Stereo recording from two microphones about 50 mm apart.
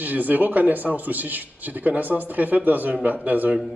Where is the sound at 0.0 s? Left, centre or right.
Right.